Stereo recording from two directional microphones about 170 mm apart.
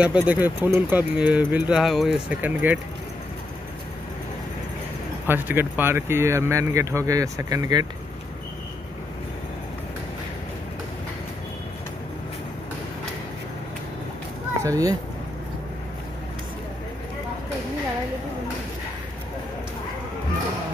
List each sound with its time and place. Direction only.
0.0 s speech: 5° right (ahead or behind)
5.2 s speech: 10° right (ahead or behind)
14.6 s speech: 20° right (ahead or behind)